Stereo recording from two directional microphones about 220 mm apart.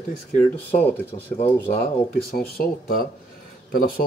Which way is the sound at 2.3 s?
45° left (ahead or behind).